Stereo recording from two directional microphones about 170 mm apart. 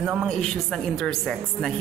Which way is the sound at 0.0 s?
Centre (ahead or behind).